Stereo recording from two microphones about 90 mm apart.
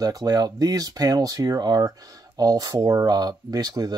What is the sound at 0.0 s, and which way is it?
Speech, 45° right (ahead or behind).